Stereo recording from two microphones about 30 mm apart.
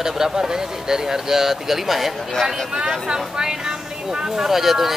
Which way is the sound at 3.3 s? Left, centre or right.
Right.